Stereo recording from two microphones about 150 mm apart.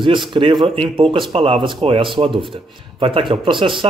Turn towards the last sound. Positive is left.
turn(degrees=-35)  # may be behind; listen again after turning